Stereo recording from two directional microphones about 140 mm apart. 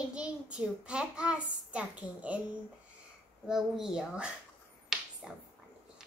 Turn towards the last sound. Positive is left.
turn(degrees=0)  # may be behind; listen again after turning